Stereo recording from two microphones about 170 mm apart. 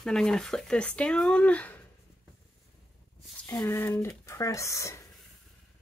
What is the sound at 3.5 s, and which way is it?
Rub, 15° left (ahead or behind).